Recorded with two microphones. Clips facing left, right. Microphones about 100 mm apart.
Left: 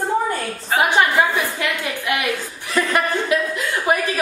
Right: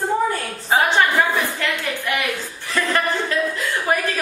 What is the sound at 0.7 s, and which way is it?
A woman's voice, 15° left (ahead or behind).